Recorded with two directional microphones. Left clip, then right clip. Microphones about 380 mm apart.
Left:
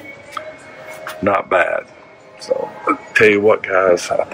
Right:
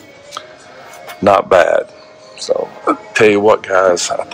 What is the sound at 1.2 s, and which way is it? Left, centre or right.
Speech, centre.